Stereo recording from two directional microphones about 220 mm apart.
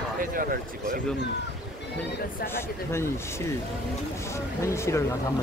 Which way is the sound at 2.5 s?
10° left (ahead or behind).